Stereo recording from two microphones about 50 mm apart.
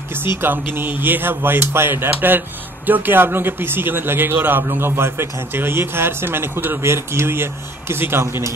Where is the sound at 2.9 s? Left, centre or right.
Right.